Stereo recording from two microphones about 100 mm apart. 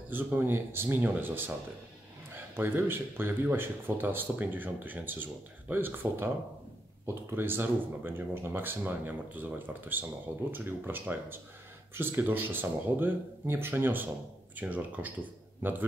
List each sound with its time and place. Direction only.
0.1 s speech: 20° right (ahead or behind)
2.5 s speech: 20° right (ahead or behind)